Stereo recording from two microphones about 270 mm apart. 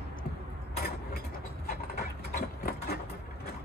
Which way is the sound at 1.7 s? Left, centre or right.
Left.